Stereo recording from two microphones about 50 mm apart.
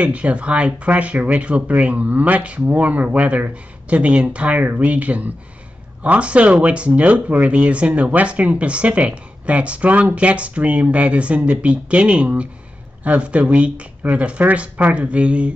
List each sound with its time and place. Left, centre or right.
0.0 s speech: right